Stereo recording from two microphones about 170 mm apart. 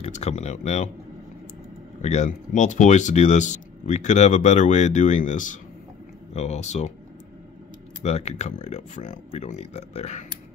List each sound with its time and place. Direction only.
0.0 s speech: 40° left (ahead or behind)
2.0 s speech: 40° left (ahead or behind)
8.0 s speech: 40° left (ahead or behind)